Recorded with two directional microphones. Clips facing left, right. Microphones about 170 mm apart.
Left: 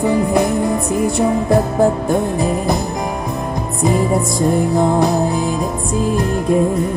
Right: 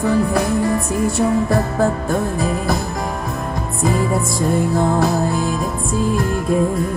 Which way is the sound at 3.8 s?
15° left (ahead or behind).